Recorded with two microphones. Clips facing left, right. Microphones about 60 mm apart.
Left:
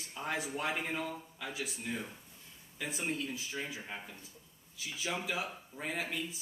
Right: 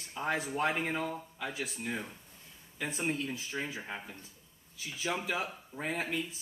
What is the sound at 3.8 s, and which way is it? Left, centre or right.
Speech, centre.